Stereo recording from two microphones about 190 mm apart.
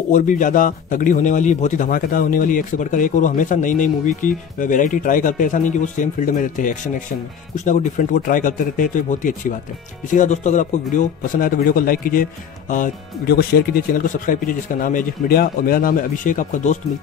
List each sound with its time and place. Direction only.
0.1 s a man's voice: 45° left (ahead or behind)